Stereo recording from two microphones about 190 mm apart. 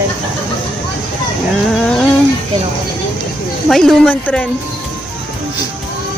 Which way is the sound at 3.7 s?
Centre (ahead or behind).